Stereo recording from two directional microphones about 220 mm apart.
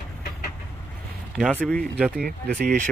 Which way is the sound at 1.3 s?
5° left (ahead or behind).